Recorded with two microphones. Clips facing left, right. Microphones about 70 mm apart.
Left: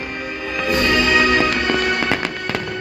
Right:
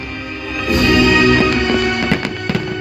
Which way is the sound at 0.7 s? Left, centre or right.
Centre.